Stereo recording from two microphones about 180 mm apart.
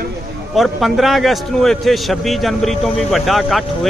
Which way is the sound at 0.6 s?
Centre (ahead or behind).